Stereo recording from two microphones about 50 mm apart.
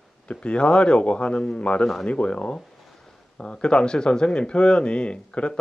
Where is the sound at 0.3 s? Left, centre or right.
Left.